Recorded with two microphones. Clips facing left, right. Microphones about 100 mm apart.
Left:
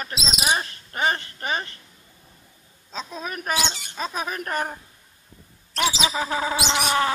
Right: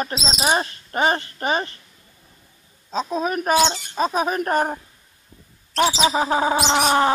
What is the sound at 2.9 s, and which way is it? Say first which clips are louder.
Speech: right 9 dB; 30° right (ahead or behind).